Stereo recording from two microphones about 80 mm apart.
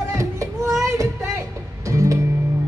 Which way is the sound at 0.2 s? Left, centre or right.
Right.